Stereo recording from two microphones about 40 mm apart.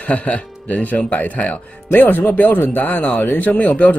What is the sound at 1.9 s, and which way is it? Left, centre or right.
Speech, left.